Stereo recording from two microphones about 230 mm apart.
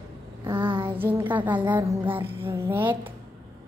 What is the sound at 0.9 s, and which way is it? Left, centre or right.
A woman's voice, centre.